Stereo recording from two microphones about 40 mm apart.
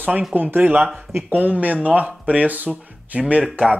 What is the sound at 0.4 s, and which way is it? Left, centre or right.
Speech, right.